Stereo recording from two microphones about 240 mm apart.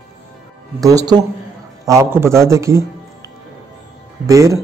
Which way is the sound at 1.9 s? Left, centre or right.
Centre.